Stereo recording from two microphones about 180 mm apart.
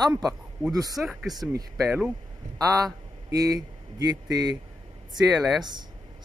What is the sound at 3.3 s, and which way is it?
Speech, 20° right (ahead or behind).